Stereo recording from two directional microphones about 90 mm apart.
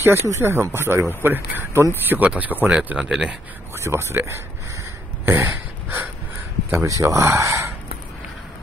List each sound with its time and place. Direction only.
0.0 s speech: 30° right (ahead or behind); by 3.3 s 5° right (ahead or behind)
3.7 s speech: 30° right (ahead or behind)
5.2 s a sound: 25° right (ahead or behind)
6.7 s speech: 35° right (ahead or behind)